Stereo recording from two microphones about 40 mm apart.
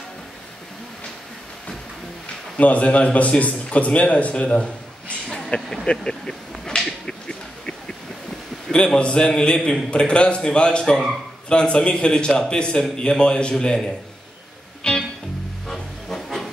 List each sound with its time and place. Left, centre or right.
2.5 s a man's voice: left
5.3 s a sound: left
8.7 s a man's voice: left
14.8 s music: centre
15.7 s music: centre